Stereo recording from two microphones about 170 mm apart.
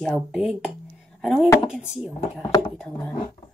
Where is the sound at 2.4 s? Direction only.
20° left (ahead or behind).